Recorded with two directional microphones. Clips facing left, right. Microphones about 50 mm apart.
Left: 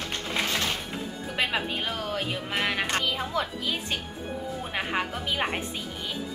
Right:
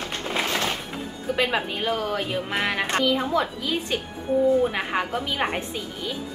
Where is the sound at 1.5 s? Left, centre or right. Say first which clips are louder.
Right 4 dB; centre.